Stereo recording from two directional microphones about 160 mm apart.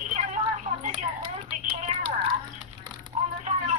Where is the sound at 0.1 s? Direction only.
45° right (ahead or behind).